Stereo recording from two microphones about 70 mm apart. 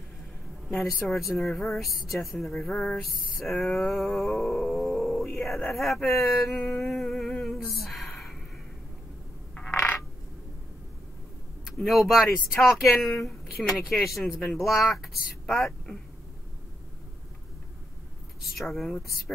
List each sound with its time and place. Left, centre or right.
0.7 s a woman's voice: centre
6.4 s humming: centre
9.6 s coin: centre
11.6 s speech: centre
18.7 s speech: centre